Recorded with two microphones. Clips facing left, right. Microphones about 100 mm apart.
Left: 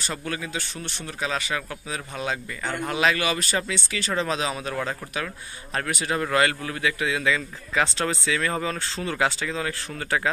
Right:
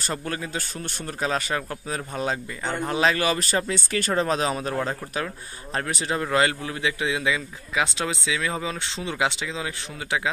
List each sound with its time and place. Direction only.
0.0 s speech: 35° right (ahead or behind)
4.8 s a man's voice: 30° right (ahead or behind); by 10.3 s 10° right (ahead or behind)